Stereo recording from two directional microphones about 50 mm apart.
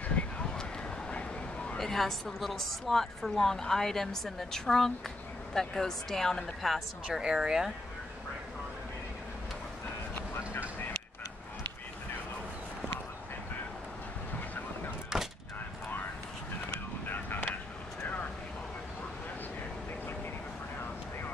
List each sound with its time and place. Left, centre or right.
0.2 s a sound: left
1.1 s vehicle: left
1.8 s speech: centre
7.1 s speech: centre
10.1 s vehicle: left
15.1 s a sound: centre
17.0 s vehicle: left